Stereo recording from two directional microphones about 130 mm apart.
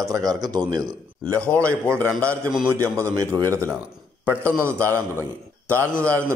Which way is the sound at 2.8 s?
25° right (ahead or behind).